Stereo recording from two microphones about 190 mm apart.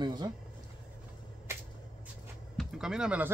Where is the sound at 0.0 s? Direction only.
20° right (ahead or behind).